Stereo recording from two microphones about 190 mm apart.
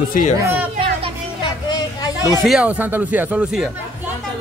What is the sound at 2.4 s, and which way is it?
Speech, 5° right (ahead or behind).